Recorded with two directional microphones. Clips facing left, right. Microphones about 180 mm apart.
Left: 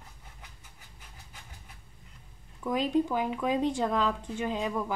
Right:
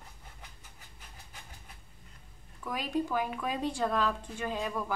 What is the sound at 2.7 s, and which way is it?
Speech, 20° left (ahead or behind).